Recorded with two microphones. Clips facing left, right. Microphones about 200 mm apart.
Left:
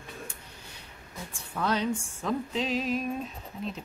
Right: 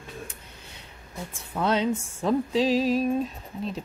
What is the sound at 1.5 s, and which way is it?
Speech, 25° right (ahead or behind).